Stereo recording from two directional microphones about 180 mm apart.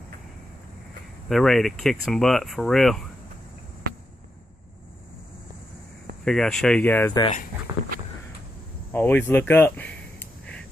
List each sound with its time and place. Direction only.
1.3 s speech: centre (ahead or behind)
6.2 s speech: 5° left (ahead or behind)
7.7 s a sound: 20° right (ahead or behind)
8.9 s speech: 10° left (ahead or behind)